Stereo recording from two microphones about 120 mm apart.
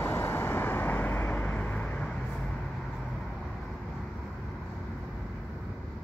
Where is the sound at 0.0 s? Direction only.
20° left (ahead or behind).